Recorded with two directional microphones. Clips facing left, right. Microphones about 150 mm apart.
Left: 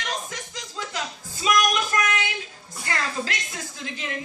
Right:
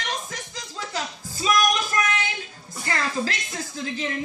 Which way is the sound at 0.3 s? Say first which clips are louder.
Even; 35° right (ahead or behind).